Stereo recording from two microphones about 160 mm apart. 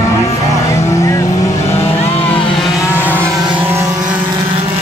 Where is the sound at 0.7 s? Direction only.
20° left (ahead or behind).